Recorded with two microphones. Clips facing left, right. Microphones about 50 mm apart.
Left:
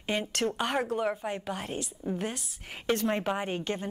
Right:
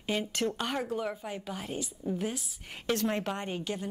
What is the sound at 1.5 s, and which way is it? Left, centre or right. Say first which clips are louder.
Speech: left 2 dB; left.